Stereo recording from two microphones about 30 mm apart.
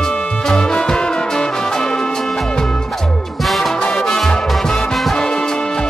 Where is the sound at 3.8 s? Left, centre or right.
Left.